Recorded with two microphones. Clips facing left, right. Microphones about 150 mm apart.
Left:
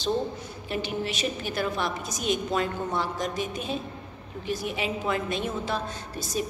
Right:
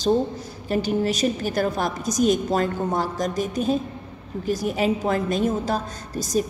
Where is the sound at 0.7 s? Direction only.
40° right (ahead or behind).